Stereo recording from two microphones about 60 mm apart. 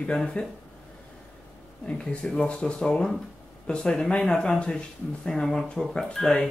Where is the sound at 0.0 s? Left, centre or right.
Centre.